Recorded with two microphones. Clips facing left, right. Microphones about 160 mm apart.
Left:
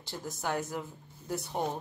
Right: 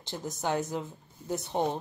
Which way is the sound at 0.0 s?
20° right (ahead or behind).